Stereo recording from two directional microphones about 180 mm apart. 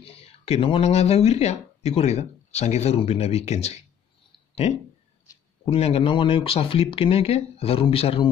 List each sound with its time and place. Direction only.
0.0 s speech: 35° left (ahead or behind)
5.7 s speech: 35° left (ahead or behind)